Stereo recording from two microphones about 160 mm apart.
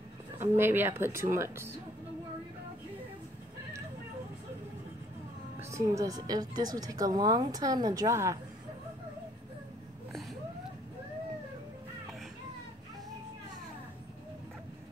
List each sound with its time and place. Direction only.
0.4 s a woman's voice: 15° right (ahead or behind)
5.6 s speech: 20° right (ahead or behind)